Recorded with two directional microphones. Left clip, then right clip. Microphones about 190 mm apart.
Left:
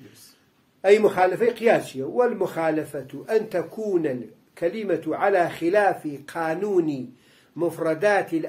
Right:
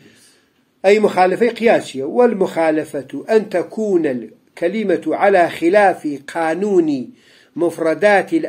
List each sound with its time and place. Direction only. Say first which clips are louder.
0.8 s a man's voice: right 5 dB; 40° right (ahead or behind)